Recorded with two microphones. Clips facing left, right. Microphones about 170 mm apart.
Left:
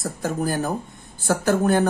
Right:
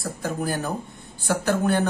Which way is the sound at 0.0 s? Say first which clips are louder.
Left 3 dB; 45° left (ahead or behind).